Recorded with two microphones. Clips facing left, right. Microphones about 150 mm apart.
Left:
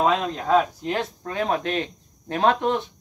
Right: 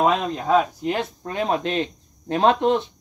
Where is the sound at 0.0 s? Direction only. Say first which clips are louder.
Right 1 dB; 15° right (ahead or behind).